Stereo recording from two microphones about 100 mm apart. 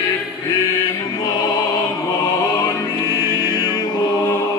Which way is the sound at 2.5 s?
35° left (ahead or behind).